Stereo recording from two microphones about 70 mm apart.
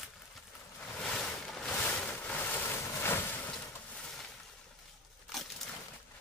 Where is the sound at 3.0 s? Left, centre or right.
Left.